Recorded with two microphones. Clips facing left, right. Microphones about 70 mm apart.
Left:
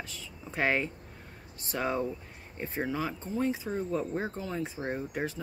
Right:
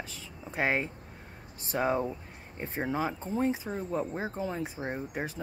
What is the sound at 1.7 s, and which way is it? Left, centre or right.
Speech, right.